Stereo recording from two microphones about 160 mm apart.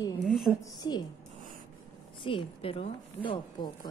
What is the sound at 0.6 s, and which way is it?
Speech, 25° left (ahead or behind).